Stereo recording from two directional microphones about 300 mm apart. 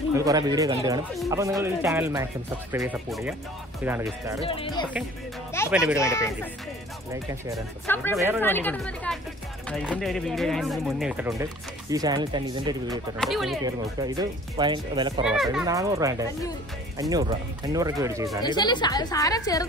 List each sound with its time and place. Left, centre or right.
0.1 s speech: centre
4.5 s a woman's voice: centre
5.7 s speech: centre
5.9 s a woman's voice: centre
7.8 s a woman's voice: centre
13.2 s speech: centre
13.7 s speech: centre
15.2 s speech: centre
18.4 s a woman's voice: centre